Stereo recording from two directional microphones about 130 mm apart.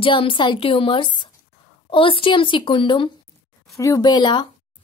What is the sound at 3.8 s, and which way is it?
Speech, 25° left (ahead or behind).